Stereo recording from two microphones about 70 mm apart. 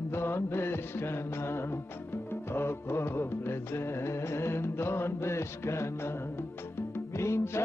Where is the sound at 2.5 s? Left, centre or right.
Left.